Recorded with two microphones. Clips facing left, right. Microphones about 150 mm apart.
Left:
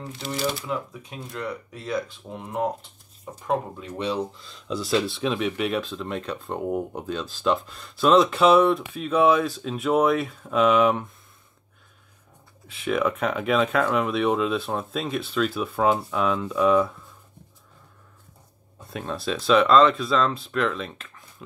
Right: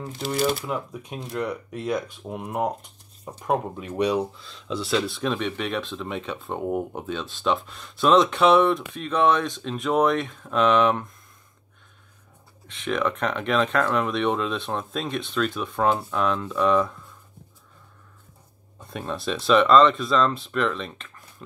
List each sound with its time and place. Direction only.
1.4 s speech: 15° right (ahead or behind)
4.4 s speech: centre (ahead or behind)
12.6 s speech: 5° left (ahead or behind)
18.9 s speech: centre (ahead or behind)